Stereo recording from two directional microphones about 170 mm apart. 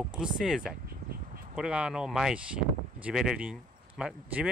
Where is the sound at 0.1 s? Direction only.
5° right (ahead or behind).